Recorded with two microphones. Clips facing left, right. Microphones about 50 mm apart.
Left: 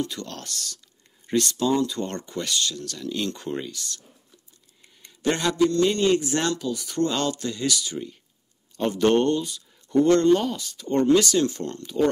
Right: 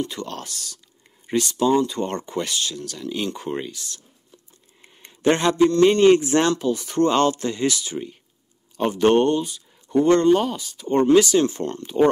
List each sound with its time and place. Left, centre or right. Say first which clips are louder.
0.0 s speech: right 2 dB; right
4.8 s a man's voice: right 6 dB; right